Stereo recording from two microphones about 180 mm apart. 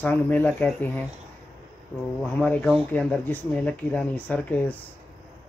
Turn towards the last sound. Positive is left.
turn(degrees=10)  # may be behind; listen again after turning